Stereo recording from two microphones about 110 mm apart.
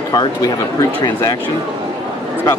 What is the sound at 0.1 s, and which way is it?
Speech, 35° left (ahead or behind).